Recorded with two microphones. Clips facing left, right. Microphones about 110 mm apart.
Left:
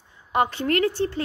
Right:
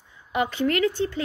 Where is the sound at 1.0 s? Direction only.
45° left (ahead or behind).